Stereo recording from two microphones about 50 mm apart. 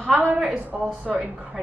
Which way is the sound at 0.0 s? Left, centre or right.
Right.